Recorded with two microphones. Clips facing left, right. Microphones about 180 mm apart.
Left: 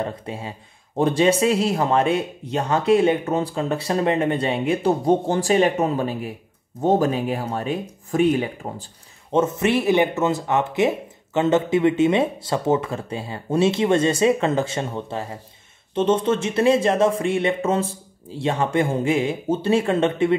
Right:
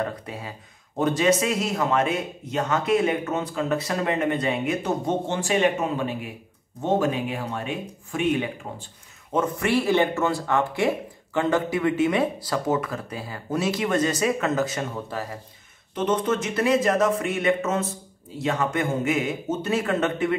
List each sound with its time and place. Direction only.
0.0 s speech: 25° left (ahead or behind)
9.3 s speech: 25° left (ahead or behind)